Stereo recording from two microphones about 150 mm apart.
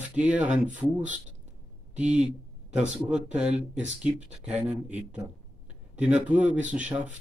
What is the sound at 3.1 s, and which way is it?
Speech, 5° right (ahead or behind).